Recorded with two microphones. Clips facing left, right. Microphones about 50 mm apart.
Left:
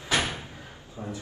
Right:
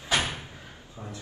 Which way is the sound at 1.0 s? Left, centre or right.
Centre.